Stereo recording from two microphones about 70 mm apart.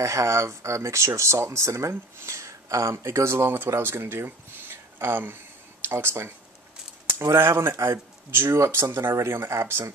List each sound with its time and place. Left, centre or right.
0.0 s speech: right